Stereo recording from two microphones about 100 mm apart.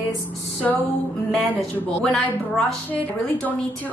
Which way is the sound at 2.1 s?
5° left (ahead or behind).